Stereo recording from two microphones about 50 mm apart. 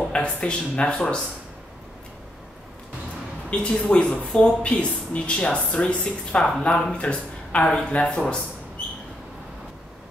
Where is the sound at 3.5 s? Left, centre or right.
Left.